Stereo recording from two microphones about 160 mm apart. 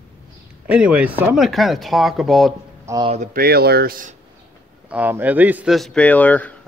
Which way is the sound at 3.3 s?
75° right (ahead or behind).